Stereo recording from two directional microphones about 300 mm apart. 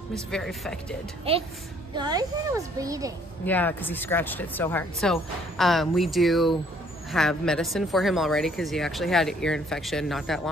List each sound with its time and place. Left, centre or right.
0.3 s speech: centre
1.3 s a woman's voice: centre
3.4 s speech: centre